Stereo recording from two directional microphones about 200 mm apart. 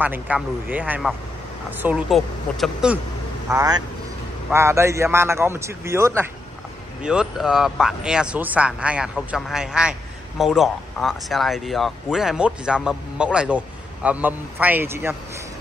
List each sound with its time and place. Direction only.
0.0 s a man's voice: 10° right (ahead or behind)
3.4 s a man's voice: 15° right (ahead or behind)